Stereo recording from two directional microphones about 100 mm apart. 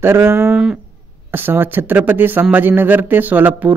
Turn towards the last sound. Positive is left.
turn(degrees=-15)  # may be behind; listen again after turning